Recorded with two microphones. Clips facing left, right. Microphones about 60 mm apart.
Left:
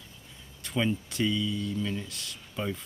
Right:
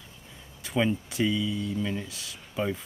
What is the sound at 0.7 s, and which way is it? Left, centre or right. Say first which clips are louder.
Speech: right 3 dB; centre.